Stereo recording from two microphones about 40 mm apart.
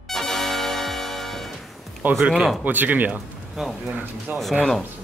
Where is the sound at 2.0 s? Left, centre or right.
Right.